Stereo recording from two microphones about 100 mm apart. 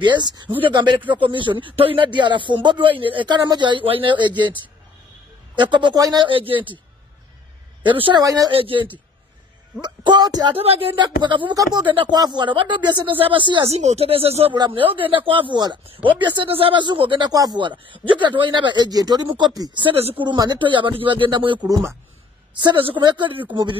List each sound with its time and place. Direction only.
0.0 s speech: 50° right (ahead or behind)
5.6 s speech: 50° right (ahead or behind)
7.8 s speech: 55° right (ahead or behind)
8.2 s speech: 35° right (ahead or behind)
8.5 s speech: 60° right (ahead or behind)
9.8 s speech: 45° right (ahead or behind)
10.6 s speech: 75° right (ahead or behind); by 11.5 s 50° right (ahead or behind)
11.5 s speech: 35° right (ahead or behind)
11.8 s speech: 55° right (ahead or behind)
13.7 s speech: 90° right
14.7 s speech: 60° right (ahead or behind)
17.3 s speech: 40° right (ahead or behind)